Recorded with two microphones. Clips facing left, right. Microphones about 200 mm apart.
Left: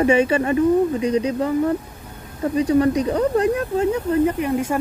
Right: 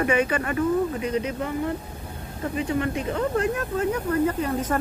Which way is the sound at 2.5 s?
35° left (ahead or behind).